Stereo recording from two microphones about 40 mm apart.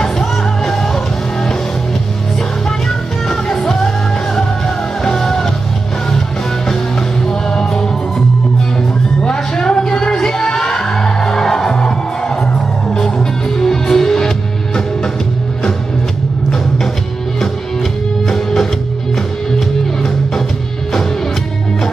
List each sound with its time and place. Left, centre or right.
0.0 s music: centre
5.0 s music: centre
9.2 s music: centre
13.6 s music: centre
18.3 s music: centre